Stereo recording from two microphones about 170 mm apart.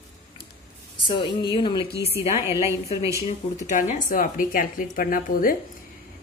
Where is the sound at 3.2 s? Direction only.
45° left (ahead or behind).